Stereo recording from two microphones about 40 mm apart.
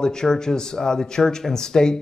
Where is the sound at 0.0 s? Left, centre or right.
Centre.